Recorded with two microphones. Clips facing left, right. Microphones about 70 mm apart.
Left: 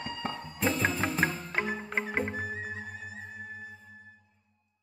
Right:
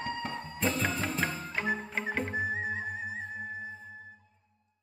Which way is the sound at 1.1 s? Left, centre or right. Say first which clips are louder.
Left 3 dB; left.